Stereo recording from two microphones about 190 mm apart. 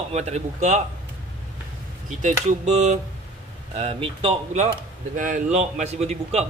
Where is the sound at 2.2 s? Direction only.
35° right (ahead or behind).